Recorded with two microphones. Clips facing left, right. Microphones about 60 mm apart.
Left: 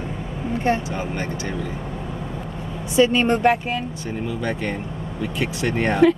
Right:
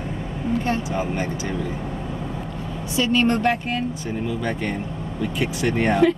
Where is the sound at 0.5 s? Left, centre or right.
Left.